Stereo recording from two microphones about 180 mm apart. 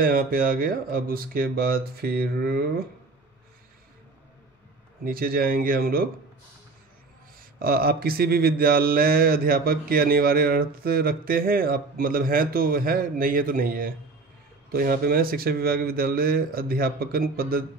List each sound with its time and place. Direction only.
0.0 s mantra: 55° right (ahead or behind)
5.0 s mantra: 55° right (ahead or behind)
7.5 s mantra: 55° right (ahead or behind)